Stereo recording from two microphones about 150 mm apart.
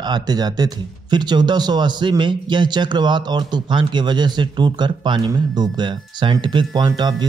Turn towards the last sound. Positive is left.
turn(degrees=-30)  # may be behind; listen again after turning